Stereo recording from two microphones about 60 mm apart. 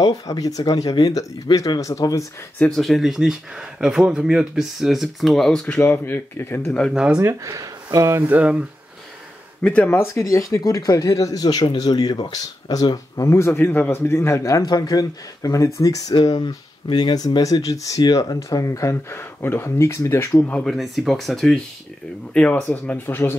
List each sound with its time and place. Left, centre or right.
0.0 s speech: left
2.7 s speech: centre
5.9 s a man's voice: left
6.9 s speech: centre
7.4 s speech: right
8.3 s speech: right
9.6 s speech: left
9.8 s speech: left
10.2 s speech: left
13.3 s a man's voice: left
14.4 s a man's voice: left
20.7 s speech: centre
22.3 s speech: centre
22.6 s speech: left